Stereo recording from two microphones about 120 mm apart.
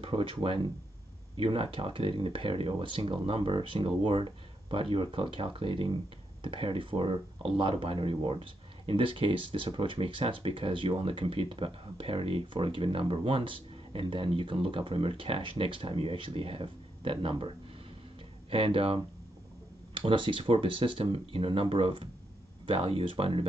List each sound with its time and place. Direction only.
0.0 s speech: 45° right (ahead or behind)
20.0 s speech: 45° right (ahead or behind)